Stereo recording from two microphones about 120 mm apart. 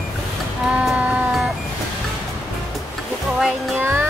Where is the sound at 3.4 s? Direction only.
10° right (ahead or behind).